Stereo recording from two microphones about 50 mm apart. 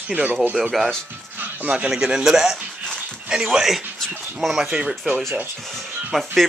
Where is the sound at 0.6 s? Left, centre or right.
Centre.